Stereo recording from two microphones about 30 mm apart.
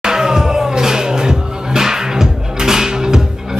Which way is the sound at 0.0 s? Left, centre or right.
Centre.